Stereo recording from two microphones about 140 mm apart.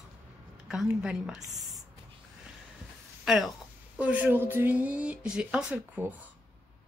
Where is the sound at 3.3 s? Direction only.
Centre (ahead or behind).